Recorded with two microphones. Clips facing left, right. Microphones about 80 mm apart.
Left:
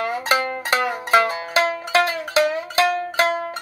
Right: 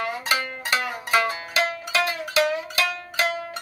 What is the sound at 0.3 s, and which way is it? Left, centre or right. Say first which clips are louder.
Music: left 5 dB; left.